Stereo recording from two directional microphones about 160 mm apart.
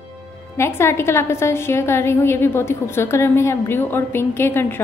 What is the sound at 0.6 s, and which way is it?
A woman's voice, 15° left (ahead or behind).